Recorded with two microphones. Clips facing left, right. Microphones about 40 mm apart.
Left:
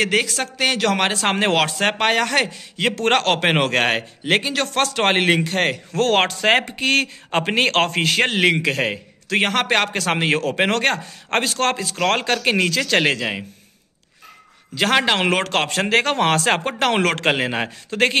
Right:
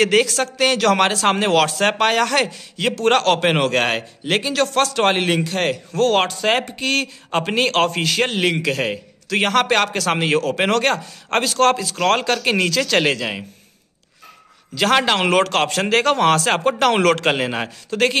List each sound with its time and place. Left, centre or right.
0.0 s speech: centre
3.0 s speech: left; by 13.5 s centre
14.8 s speech: centre
17.8 s speech: left